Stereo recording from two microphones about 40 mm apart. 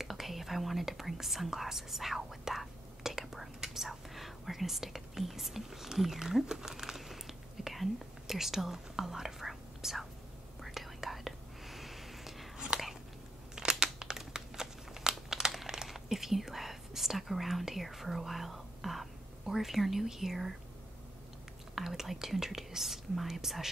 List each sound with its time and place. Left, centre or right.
0.0 s whispering: centre
12.5 s biting: right
13.6 s crumpling: centre
21.7 s speech: centre